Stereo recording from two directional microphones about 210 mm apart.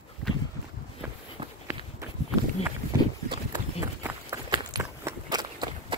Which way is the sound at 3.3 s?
15° right (ahead or behind).